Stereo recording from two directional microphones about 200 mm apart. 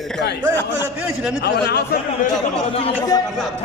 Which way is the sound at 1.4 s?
55° left (ahead or behind).